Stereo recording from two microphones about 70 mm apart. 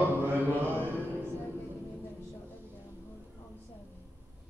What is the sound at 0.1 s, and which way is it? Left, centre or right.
Mantra, right.